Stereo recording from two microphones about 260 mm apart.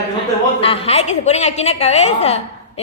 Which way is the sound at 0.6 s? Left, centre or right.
Left.